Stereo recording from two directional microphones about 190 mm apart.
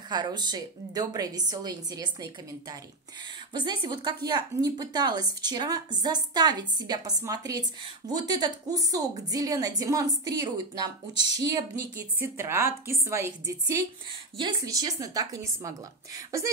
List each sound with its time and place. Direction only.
0.1 s a woman's voice: 20° right (ahead or behind)
3.5 s a woman's voice: 25° right (ahead or behind)